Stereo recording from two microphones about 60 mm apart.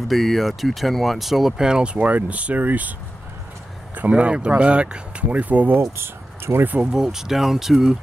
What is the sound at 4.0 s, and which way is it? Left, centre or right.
Speech, right.